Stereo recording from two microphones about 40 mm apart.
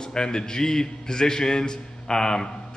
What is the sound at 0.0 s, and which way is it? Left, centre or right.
A man's voice, centre.